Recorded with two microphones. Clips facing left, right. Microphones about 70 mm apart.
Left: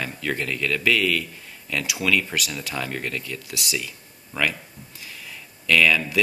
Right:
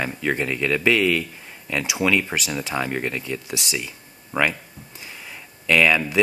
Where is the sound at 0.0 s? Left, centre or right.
Right.